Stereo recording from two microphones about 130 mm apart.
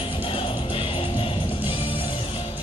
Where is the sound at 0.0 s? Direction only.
40° left (ahead or behind).